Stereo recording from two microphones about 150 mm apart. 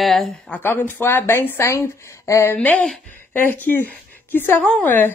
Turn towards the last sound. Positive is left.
turn(degrees=10)  # may be behind; listen again after turning